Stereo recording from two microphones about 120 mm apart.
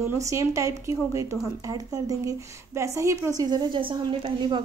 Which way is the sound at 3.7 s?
45° right (ahead or behind).